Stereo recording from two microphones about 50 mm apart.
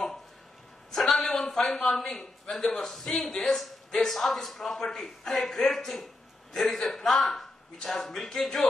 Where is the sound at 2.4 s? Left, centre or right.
Centre.